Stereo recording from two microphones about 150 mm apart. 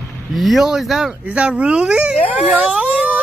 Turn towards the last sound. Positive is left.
turn(degrees=-5)  # may be behind; listen again after turning